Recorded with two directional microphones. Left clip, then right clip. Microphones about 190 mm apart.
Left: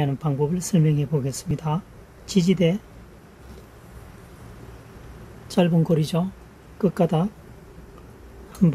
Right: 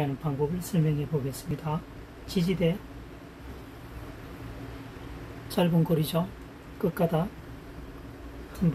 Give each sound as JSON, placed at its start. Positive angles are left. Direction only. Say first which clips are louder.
{"t": 0.0, "sound": "speech", "louder": "left 5 dB", "side_deg": 65}
{"t": 5.5, "sound": "speech", "louder": "left 5 dB", "side_deg": 60}